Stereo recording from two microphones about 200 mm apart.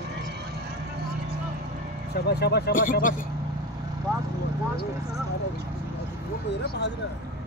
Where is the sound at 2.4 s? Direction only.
55° left (ahead or behind).